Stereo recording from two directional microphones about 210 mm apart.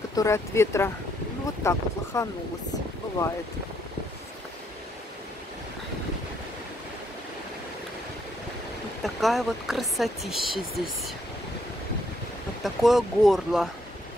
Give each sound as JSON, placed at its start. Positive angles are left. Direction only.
{"t": 0.1, "sound": "speech", "side_deg": 15}
{"t": 9.0, "sound": "speech", "side_deg": 0}
{"t": 12.6, "sound": "speech", "side_deg": 0}